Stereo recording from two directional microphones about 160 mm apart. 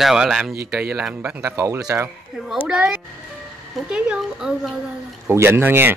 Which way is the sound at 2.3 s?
5° right (ahead or behind).